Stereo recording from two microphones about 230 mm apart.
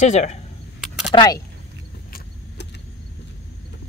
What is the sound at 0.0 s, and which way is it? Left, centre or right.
Speech, left.